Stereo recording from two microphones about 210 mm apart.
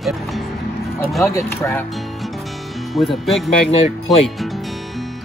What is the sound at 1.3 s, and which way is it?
Speech, 15° left (ahead or behind).